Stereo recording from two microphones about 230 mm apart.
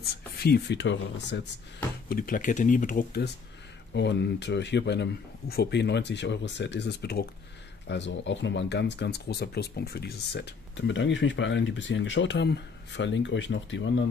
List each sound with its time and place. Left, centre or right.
0.0 s speech: left
2.0 s speech: left